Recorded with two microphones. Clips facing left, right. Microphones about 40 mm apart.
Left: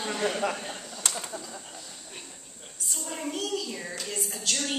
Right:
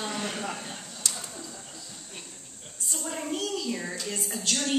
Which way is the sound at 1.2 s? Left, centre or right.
Centre.